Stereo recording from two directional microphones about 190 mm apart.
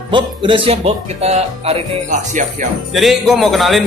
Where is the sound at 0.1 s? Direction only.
25° right (ahead or behind).